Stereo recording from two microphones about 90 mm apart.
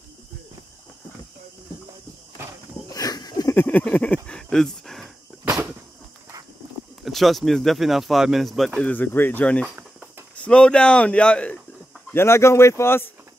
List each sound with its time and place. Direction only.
2.9 s a sound: 45° left (ahead or behind)
3.5 s speech: 15° left (ahead or behind)
7.1 s speech: centre (ahead or behind)
8.8 s speech: 20° left (ahead or behind)
12.1 s speech: 30° left (ahead or behind)